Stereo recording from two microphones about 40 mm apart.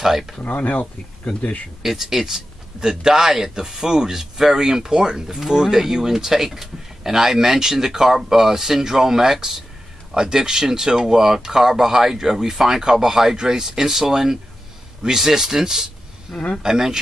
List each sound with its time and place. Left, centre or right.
0.4 s speech: left
1.8 s speech: centre